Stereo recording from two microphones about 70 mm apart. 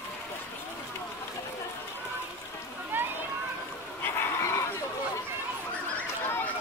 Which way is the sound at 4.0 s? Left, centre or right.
Left.